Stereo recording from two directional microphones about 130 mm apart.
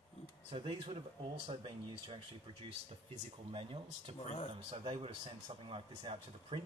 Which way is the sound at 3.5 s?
45° right (ahead or behind).